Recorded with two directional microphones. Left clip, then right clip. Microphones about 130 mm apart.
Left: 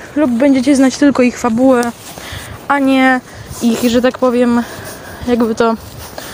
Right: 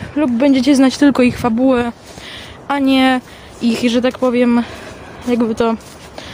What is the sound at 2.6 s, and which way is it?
Speech, 20° right (ahead or behind).